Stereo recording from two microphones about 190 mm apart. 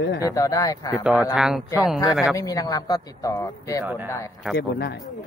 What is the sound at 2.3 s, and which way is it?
Speech, 15° left (ahead or behind).